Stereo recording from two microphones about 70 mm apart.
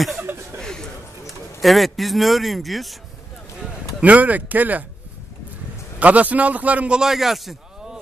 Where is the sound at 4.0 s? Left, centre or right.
Right.